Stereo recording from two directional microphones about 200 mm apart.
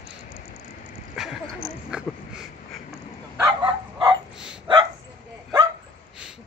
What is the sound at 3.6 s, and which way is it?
Bow-wow, 25° right (ahead or behind).